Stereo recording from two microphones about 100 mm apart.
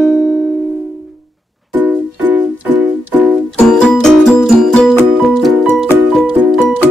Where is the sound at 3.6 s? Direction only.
10° left (ahead or behind).